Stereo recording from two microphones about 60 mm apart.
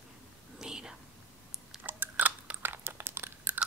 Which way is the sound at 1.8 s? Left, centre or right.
Right.